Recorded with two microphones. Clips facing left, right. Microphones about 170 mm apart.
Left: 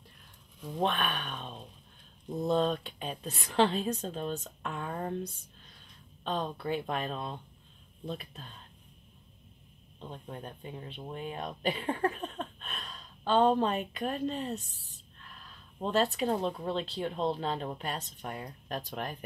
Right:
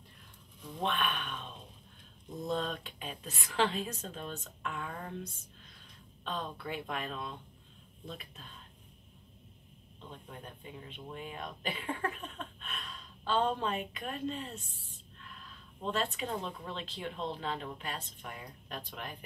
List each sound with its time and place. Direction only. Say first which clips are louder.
0.7 s speech: left 3 dB; 40° left (ahead or behind)
10.0 s speech: left 5 dB; 35° left (ahead or behind)
15.8 s speech: left 6 dB; 40° left (ahead or behind)